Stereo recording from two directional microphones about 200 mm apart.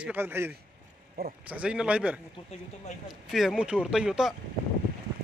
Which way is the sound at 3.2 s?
Centre (ahead or behind).